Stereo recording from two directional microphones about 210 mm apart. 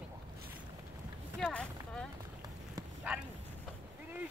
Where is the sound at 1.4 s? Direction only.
5° left (ahead or behind).